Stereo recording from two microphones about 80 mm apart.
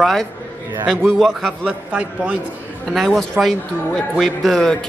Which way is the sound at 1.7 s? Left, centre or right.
Centre.